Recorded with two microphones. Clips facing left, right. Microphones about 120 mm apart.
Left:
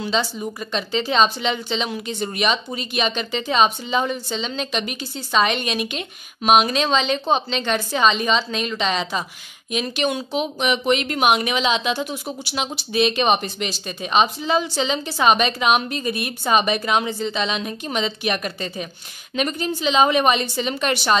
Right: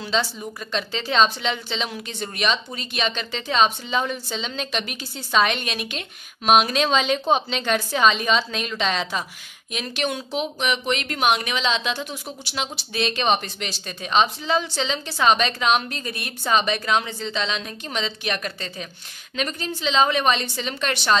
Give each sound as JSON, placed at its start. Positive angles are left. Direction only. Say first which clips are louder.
{"t": 0.0, "sound": "a woman's voice", "louder": "left 2 dB", "side_deg": 0}